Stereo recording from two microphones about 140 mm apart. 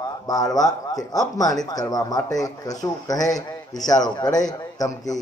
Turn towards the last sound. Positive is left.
turn(degrees=25)  # may be behind; listen again after turning